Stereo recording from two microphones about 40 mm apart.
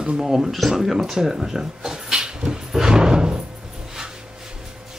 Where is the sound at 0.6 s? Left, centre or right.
Centre.